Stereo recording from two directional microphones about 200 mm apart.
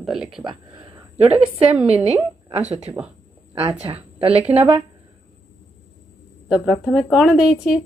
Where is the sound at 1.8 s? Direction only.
30° right (ahead or behind).